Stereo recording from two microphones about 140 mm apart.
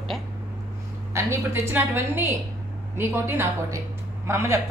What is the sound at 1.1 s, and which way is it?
A woman's voice, 20° right (ahead or behind).